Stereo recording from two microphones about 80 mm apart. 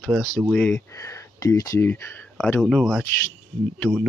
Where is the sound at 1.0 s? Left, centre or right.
Left.